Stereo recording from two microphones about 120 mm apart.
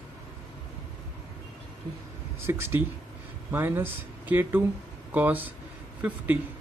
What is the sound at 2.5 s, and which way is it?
Speech, 20° right (ahead or behind).